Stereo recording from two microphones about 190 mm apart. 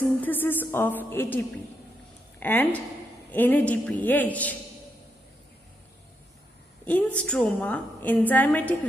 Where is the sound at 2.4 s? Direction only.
10° left (ahead or behind).